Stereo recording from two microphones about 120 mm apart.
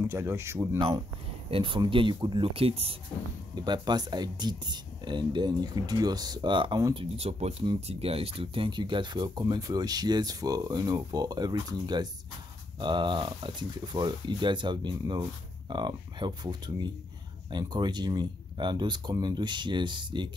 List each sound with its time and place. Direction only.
0.1 s speech: 20° right (ahead or behind)
1.5 s speech: 45° right (ahead or behind)
3.5 s speech: 35° right (ahead or behind)
6.9 s speech: 50° right (ahead or behind)